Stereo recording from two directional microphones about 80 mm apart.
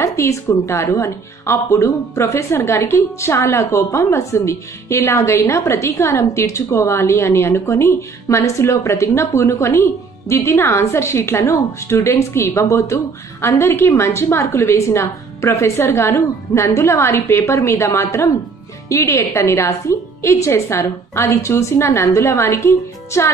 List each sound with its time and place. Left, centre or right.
0.0 s a woman's voice: left